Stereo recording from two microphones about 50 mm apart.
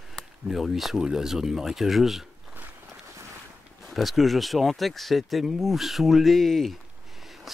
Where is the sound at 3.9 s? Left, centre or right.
Centre.